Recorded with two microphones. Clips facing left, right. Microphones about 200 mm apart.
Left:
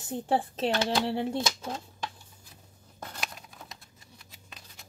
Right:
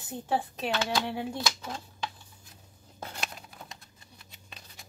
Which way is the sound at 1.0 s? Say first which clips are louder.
Left 4 dB; 25° left (ahead or behind).